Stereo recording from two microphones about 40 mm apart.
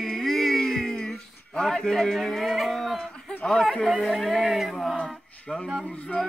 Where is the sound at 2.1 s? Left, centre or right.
Centre.